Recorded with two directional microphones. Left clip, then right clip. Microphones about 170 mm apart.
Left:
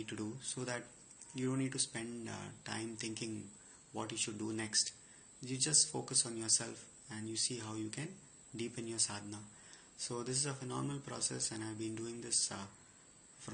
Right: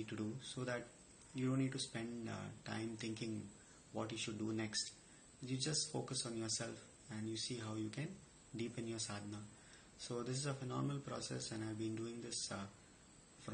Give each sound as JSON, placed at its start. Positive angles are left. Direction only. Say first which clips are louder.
{"t": 0.0, "sound": "a man's voice", "louder": "left 3 dB", "side_deg": -15}